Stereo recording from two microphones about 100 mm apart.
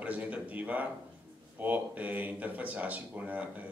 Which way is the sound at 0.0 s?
15° right (ahead or behind).